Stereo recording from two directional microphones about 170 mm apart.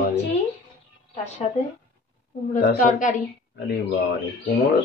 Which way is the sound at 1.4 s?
35° left (ahead or behind).